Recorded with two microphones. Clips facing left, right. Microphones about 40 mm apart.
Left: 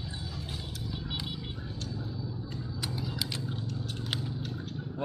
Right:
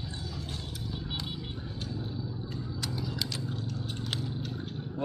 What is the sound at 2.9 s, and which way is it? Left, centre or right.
Vehicle, centre.